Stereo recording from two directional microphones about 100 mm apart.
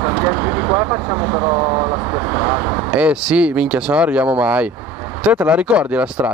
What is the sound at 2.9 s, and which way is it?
Speech, 10° right (ahead or behind).